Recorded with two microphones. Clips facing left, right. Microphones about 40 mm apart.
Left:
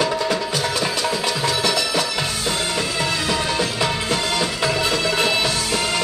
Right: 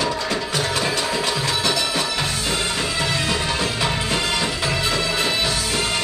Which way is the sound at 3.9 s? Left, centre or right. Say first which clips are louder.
Left 1 dB; centre.